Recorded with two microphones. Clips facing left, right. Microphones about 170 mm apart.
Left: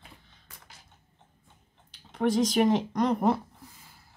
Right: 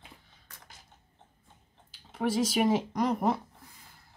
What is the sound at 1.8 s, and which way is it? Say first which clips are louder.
Speech: left 4 dB; 5° right (ahead or behind).